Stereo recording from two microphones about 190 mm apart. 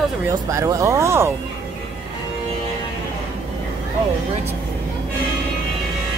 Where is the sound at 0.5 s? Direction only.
15° right (ahead or behind).